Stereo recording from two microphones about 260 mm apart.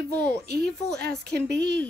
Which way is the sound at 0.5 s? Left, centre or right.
Right.